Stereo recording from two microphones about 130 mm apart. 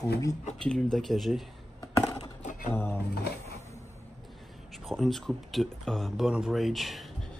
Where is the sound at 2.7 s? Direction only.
15° left (ahead or behind).